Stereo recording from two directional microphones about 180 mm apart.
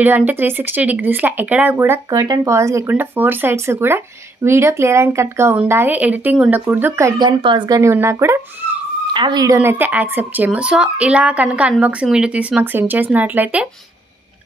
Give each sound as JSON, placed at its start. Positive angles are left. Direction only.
{"t": 0.0, "sound": "speech", "side_deg": -10}
{"t": 9.1, "sound": "speech", "side_deg": -25}